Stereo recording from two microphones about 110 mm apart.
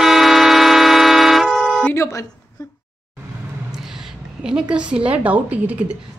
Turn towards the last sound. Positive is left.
turn(degrees=-15)  # may be behind; listen again after turning